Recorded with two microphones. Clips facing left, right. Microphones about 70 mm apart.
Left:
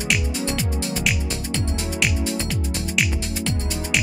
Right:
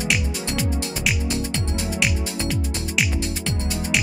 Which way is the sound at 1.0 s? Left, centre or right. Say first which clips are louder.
Right 1 dB; centre.